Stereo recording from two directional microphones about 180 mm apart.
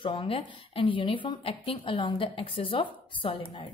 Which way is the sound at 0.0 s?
30° left (ahead or behind).